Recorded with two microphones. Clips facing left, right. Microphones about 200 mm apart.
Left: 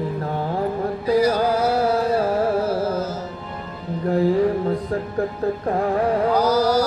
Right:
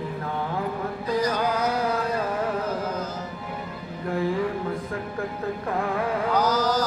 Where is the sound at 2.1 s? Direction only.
35° left (ahead or behind).